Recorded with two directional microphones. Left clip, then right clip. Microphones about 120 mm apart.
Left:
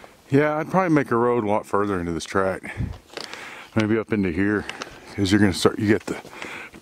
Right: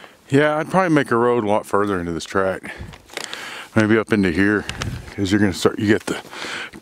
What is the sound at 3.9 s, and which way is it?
Speech, 35° right (ahead or behind).